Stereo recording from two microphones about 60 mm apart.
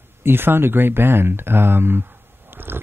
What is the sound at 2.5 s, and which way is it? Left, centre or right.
Biting, right.